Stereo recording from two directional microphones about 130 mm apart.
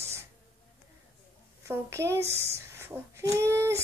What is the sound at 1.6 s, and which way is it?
A woman's voice, 20° right (ahead or behind).